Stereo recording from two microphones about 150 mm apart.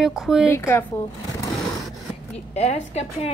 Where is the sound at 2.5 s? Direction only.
45° left (ahead or behind).